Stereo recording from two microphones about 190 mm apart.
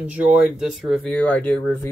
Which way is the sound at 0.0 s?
5° right (ahead or behind).